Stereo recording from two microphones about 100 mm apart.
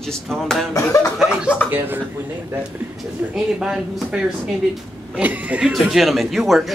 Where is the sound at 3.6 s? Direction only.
5° right (ahead or behind).